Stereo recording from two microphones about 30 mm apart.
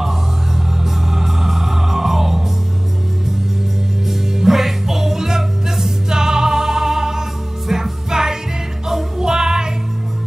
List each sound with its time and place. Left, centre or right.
0.8 s music: centre
4.1 s music: centre